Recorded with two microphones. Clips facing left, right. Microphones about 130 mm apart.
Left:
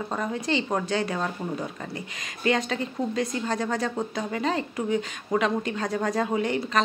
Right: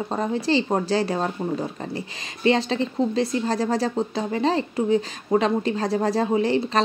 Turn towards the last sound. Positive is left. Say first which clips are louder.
# right 4 dB
turn(degrees=-30)  # may be behind; listen again after turning